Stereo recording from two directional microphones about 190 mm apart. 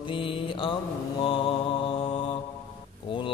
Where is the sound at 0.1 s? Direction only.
25° left (ahead or behind).